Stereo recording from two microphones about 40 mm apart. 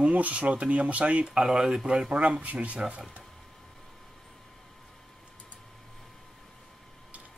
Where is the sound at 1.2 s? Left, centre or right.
Right.